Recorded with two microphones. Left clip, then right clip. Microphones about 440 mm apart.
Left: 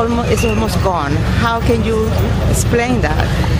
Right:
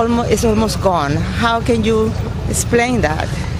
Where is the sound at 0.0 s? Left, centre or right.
Right.